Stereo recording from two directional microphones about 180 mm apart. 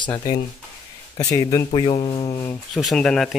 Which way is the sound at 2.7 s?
Centre (ahead or behind).